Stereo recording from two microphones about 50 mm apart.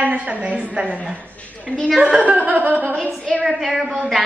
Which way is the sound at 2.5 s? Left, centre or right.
Right.